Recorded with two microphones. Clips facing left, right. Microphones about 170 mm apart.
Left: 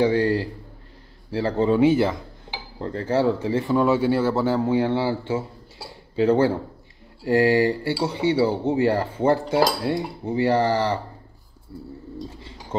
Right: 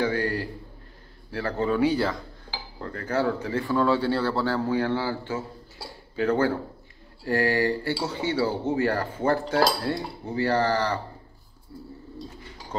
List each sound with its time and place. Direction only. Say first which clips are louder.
0.0 s a man's voice: left 6 dB; 25° left (ahead or behind)
1.3 s cutlery: left 5 dB; 25° left (ahead or behind)